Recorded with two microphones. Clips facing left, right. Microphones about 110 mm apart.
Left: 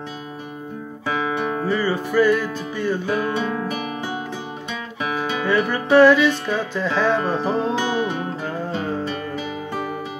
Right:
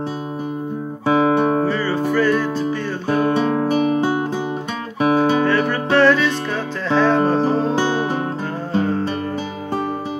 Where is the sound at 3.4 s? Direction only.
40° right (ahead or behind).